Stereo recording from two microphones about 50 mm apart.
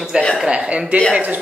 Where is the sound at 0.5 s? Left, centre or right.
Right.